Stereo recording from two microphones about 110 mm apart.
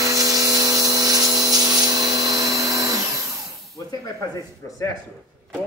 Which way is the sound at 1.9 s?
35° right (ahead or behind).